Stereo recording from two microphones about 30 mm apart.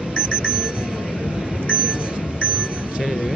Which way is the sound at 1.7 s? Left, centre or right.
Right.